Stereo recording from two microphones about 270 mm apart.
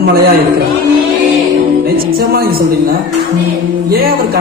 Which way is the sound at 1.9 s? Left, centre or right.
Right.